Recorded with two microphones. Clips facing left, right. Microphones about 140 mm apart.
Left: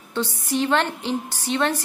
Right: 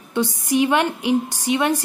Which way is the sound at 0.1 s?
15° right (ahead or behind).